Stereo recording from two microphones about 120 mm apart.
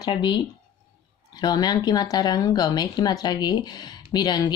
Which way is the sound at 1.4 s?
35° left (ahead or behind).